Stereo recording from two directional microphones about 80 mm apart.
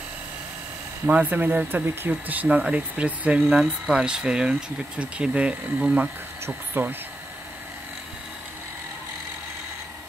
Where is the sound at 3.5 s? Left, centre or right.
Centre.